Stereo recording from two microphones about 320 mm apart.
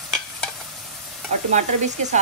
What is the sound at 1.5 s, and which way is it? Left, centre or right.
Speech, right.